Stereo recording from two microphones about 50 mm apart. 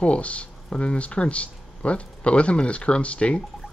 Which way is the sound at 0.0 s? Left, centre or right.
Left.